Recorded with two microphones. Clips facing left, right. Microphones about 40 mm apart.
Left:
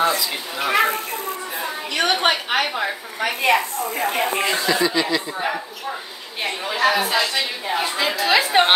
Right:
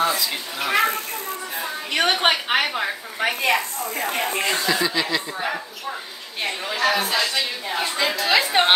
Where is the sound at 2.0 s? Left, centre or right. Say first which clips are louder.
Even; centre.